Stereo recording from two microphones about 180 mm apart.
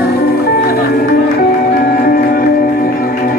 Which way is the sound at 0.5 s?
55° left (ahead or behind).